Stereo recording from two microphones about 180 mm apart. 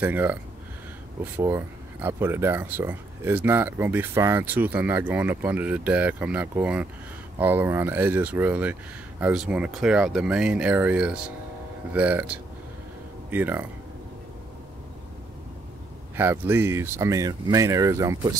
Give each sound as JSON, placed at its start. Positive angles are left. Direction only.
{"t": 0.0, "sound": "speech", "side_deg": -10}
{"t": 16.2, "sound": "speech", "side_deg": -10}